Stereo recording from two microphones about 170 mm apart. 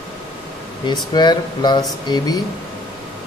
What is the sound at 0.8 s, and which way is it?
Speech, 25° left (ahead or behind).